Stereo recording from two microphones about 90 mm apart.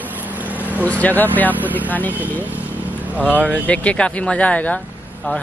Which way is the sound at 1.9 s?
20° left (ahead or behind).